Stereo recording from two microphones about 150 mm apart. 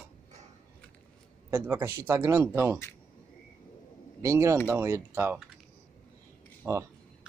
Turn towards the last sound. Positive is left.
turn(degrees=-20)  # may be behind; listen again after turning